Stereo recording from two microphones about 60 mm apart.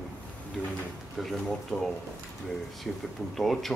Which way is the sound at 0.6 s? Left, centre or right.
Left.